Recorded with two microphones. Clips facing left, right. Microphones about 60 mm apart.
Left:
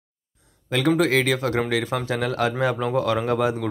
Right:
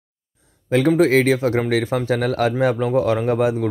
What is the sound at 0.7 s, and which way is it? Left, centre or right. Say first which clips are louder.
Speech: right 5 dB; right.